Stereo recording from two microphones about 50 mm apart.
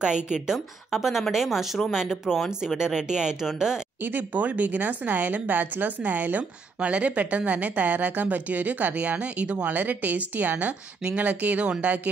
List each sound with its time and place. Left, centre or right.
0.0 s speech: centre
0.9 s speech: centre
4.0 s speech: right